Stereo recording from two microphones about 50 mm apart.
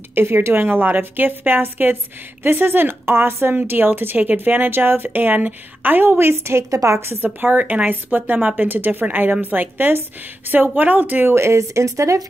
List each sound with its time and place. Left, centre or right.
0.1 s speech: right
0.6 s a woman's voice: right
3.5 s speech: right
7.3 s a woman's voice: right
11.3 s speech: right